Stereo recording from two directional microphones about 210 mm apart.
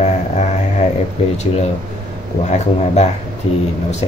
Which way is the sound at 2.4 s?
35° left (ahead or behind).